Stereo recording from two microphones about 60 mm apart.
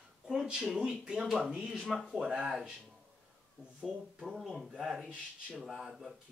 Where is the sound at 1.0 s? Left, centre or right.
Centre.